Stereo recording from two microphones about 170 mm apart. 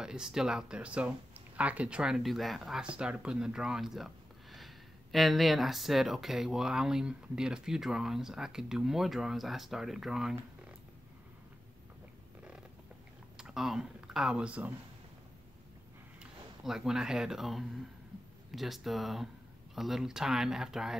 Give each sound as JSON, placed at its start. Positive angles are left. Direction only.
{"t": 0.0, "sound": "speech", "side_deg": -5}
{"t": 13.4, "sound": "speech", "side_deg": -5}
{"t": 16.2, "sound": "speech", "side_deg": -5}